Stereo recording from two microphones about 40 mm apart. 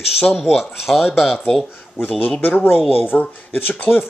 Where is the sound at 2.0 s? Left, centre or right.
Left.